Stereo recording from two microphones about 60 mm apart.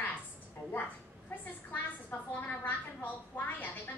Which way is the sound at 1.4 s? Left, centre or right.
Left.